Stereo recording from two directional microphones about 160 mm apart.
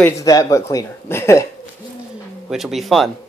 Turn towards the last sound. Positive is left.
turn(degrees=0)  # may be behind; listen again after turning